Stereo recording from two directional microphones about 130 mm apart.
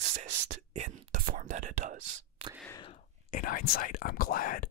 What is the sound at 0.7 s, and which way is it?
Whispering, 75° right (ahead or behind).